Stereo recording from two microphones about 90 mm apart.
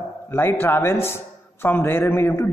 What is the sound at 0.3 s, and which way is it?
Speech, 25° left (ahead or behind).